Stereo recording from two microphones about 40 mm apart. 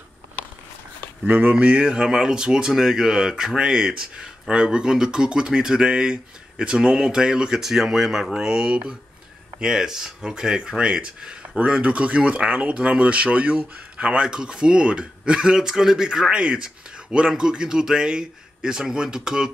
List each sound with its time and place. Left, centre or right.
1.5 s speech: right
7.6 s speech: centre
8.4 s speech: centre; by 13.7 s right
13.9 s speech: right